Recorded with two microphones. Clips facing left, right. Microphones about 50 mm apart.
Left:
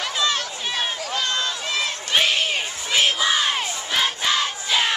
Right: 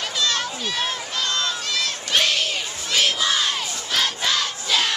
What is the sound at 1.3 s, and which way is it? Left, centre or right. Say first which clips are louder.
Crowd: even; left.